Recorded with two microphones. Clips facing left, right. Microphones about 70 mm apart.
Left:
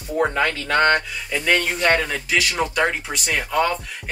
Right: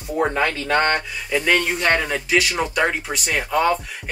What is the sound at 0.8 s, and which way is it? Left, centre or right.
Speech, centre.